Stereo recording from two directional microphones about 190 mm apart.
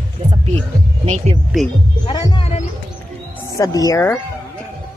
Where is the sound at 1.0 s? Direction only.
35° right (ahead or behind).